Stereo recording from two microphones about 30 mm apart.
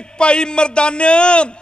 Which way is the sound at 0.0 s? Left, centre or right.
Left.